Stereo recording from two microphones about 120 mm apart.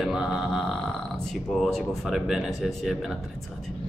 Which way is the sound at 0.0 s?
Centre (ahead or behind).